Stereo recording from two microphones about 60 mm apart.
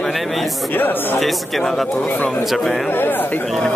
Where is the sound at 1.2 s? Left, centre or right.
Centre.